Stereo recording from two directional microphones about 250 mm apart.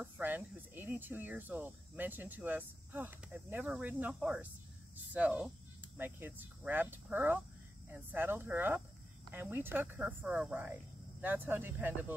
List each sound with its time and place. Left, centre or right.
0.0 s speech: centre